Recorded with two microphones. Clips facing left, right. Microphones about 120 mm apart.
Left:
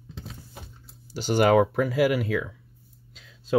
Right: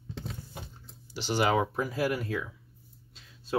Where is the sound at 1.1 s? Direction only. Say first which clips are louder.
Left 7 dB; 50° left (ahead or behind); by 2.5 s 90° left.